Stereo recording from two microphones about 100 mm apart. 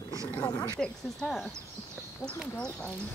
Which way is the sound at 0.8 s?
5° left (ahead or behind).